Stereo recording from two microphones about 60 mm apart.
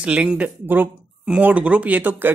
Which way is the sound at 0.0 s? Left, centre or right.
Centre.